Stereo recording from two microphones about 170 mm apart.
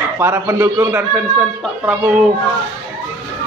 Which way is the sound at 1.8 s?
10° right (ahead or behind).